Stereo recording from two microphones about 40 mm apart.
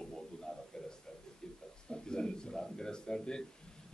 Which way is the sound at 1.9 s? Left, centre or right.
Left.